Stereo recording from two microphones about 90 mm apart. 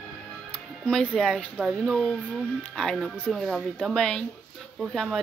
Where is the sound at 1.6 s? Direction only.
Centre (ahead or behind).